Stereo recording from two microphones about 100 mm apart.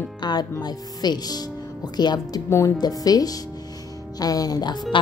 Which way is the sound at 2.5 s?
25° left (ahead or behind).